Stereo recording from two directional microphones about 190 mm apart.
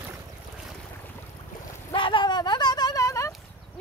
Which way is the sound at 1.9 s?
25° left (ahead or behind).